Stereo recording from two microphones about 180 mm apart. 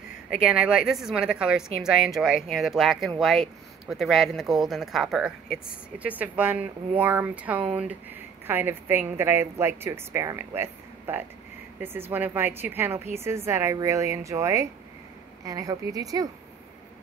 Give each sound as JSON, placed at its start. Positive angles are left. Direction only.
{"t": 0.3, "sound": "a woman's voice", "side_deg": -5}